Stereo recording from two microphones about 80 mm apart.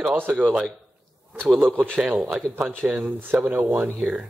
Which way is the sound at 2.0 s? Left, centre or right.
Right.